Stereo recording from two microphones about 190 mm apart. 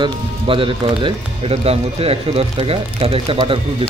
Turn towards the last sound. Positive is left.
turn(degrees=-30)  # may be behind; listen again after turning